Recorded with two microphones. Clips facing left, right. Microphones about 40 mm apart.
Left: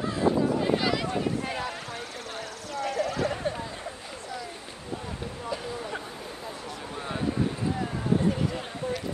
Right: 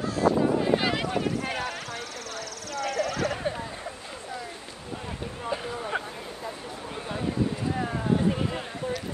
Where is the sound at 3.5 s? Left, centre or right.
Right.